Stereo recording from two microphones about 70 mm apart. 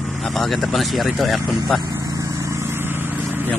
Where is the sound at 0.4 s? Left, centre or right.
Centre.